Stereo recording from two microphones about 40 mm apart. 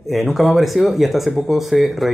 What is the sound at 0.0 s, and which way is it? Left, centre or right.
Speech, centre.